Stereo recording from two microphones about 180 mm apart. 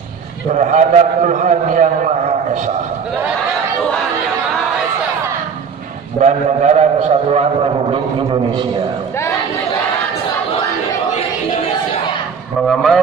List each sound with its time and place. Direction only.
0.6 s a man's voice: 45° right (ahead or behind)
6.2 s a man's voice: 40° right (ahead or behind)
12.6 s a man's voice: centre (ahead or behind)